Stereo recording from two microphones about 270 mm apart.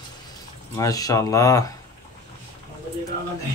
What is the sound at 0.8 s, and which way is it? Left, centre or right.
Speech, centre.